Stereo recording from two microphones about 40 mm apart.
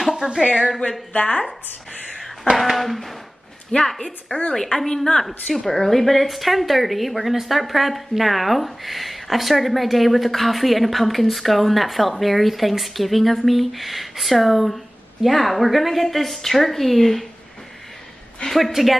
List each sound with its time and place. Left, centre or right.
0.1 s speech: right
1.1 s speech: left
2.5 s speech: centre
3.7 s a woman's voice: left
4.3 s speech: left
4.7 s a woman's voice: centre
18.7 s speech: centre